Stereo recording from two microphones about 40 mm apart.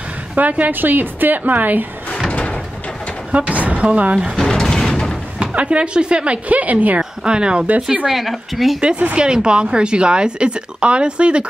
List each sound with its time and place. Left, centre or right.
0.4 s a woman's voice: right
3.3 s speech: right
4.5 s music: centre
5.4 s speech: right
7.0 s speech: right
8.1 s a woman's voice: centre
8.8 s speech: right